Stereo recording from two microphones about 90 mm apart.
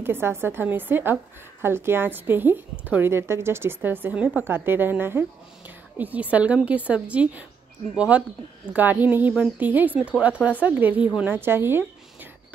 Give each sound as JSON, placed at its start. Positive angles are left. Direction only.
{"t": 0.0, "sound": "a woman's voice", "side_deg": -25}